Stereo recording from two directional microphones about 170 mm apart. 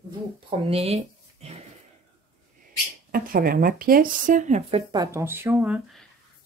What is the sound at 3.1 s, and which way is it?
Speech, 55° right (ahead or behind).